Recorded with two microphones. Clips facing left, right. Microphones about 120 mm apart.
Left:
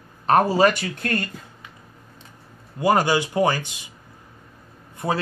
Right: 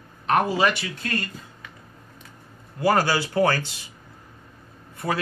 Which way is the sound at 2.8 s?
20° left (ahead or behind).